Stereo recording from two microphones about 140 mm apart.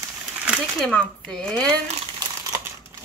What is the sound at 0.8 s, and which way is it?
A woman's voice, 5° left (ahead or behind).